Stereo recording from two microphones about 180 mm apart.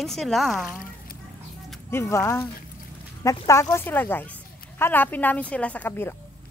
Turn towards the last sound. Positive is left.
turn(degrees=10)  # may be behind; listen again after turning